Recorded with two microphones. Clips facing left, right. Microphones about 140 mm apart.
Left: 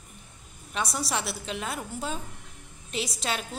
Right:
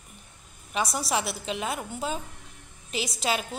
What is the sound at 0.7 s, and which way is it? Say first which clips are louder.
A woman's voice: right 3 dB; centre (ahead or behind).